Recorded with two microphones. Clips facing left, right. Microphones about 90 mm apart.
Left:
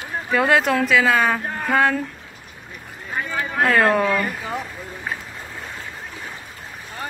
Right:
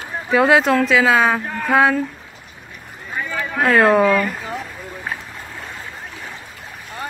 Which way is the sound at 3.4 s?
Centre (ahead or behind).